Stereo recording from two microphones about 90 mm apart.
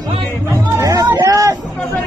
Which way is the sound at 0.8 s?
45° right (ahead or behind).